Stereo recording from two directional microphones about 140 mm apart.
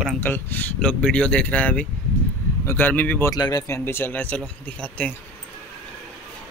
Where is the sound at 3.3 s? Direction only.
25° left (ahead or behind).